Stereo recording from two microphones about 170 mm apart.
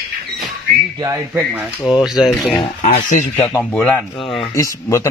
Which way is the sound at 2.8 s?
50° left (ahead or behind).